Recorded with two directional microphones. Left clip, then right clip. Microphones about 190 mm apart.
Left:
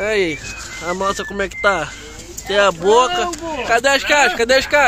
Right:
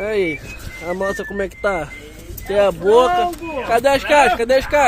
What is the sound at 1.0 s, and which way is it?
Speech, 15° right (ahead or behind).